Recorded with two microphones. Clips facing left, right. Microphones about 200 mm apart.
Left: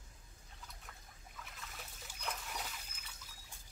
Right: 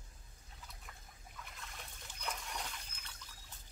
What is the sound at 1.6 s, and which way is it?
Trickle, centre (ahead or behind).